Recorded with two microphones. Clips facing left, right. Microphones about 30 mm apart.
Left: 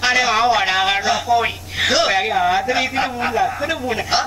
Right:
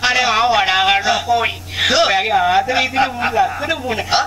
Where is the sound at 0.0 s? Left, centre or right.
Centre.